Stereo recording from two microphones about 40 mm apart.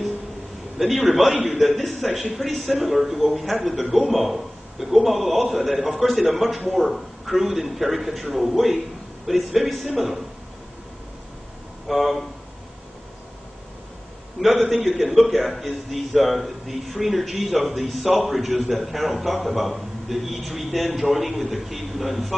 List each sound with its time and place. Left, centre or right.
0.7 s speech: centre
11.9 s speech: centre
14.5 s speech: centre